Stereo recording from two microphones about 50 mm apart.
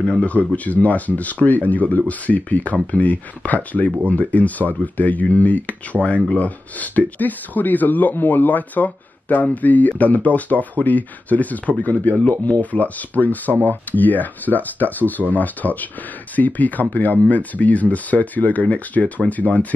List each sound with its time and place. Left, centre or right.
0.2 s speech: left
6.0 s speech: centre
6.3 s speech: left